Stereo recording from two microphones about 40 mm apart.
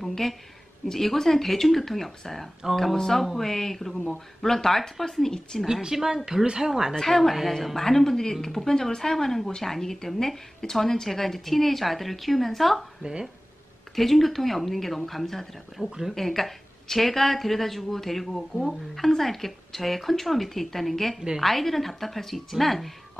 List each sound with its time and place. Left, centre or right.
0.0 s a sound: centre
0.8 s a woman's voice: centre
5.7 s speech: centre
7.0 s a woman's voice: centre
13.0 s speech: centre
13.9 s a woman's voice: centre
15.9 s speech: centre
16.2 s a woman's voice: centre